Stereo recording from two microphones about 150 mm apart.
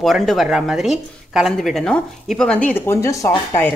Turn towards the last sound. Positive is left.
turn(degrees=15)  # may be behind; listen again after turning